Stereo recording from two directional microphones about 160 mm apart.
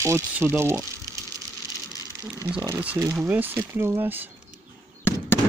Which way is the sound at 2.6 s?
10° right (ahead or behind).